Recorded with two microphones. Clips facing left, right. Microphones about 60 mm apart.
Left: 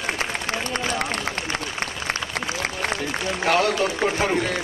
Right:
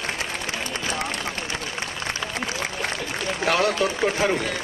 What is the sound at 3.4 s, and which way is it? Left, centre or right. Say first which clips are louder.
Run: left 1 dB; left.